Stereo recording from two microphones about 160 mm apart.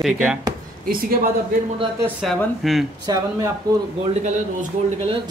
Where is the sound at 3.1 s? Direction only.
25° right (ahead or behind).